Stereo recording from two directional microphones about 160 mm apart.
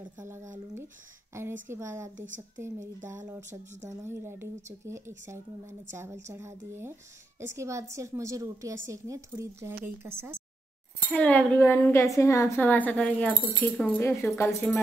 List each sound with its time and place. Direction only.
1.3 s a woman's voice: 15° right (ahead or behind)
3.4 s speech: 50° right (ahead or behind)
4.0 s a woman's voice: 15° right (ahead or behind)
11.1 s a woman's voice: 10° left (ahead or behind)